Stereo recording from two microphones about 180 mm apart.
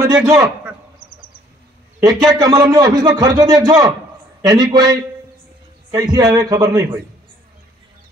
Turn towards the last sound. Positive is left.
turn(degrees=-20)  # may be behind; listen again after turning